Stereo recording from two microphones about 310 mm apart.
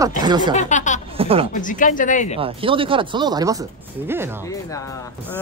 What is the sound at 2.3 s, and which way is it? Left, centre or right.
Speech, centre.